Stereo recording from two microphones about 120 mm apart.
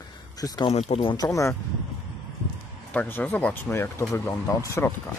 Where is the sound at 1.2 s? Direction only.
25° left (ahead or behind).